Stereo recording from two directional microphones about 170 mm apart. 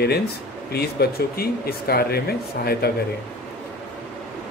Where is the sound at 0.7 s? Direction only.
65° left (ahead or behind).